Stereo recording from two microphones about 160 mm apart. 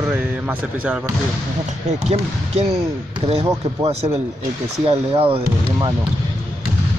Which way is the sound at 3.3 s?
40° right (ahead or behind).